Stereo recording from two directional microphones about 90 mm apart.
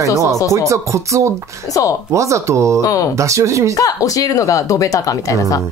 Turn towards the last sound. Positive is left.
turn(degrees=40)  # may be behind; listen again after turning